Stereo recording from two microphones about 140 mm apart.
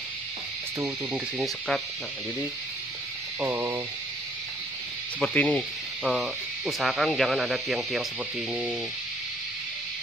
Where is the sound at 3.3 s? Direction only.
15° right (ahead or behind).